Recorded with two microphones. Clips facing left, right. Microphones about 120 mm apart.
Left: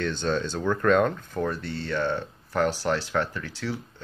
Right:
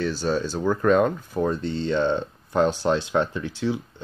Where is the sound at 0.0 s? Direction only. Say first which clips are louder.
Right 2 dB; 10° right (ahead or behind).